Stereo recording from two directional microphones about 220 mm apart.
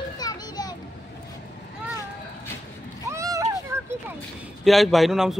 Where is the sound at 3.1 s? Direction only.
15° right (ahead or behind).